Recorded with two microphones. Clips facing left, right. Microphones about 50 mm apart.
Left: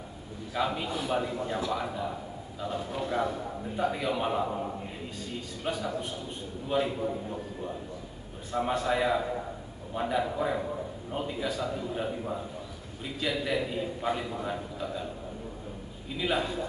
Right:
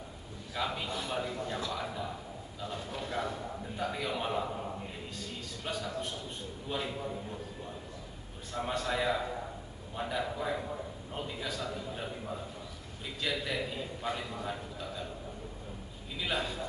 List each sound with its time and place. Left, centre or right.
0.6 s a man's voice: centre
5.6 s a man's voice: centre
8.5 s a man's voice: centre
16.2 s a man's voice: centre